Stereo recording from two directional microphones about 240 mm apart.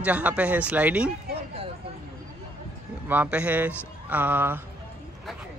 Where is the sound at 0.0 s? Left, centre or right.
Centre.